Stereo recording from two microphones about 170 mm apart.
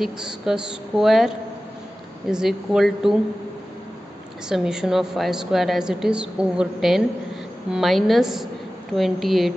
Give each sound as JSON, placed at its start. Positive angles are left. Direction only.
{"t": 0.0, "sound": "a woman's voice", "side_deg": -5}
{"t": 4.5, "sound": "a woman's voice", "side_deg": -5}